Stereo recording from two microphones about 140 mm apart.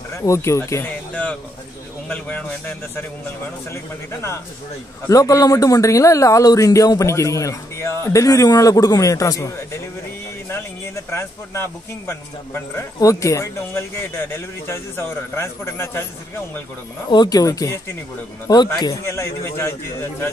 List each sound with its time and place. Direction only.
0.1 s a man's voice: 20° left (ahead or behind)
11.1 s a man's voice: 20° left (ahead or behind)
17.1 s a man's voice: 30° left (ahead or behind)
19.0 s a man's voice: 20° left (ahead or behind)